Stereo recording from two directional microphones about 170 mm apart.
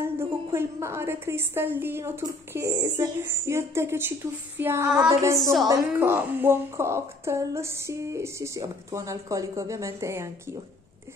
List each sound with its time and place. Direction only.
0.0 s a woman's voice: 15° right (ahead or behind)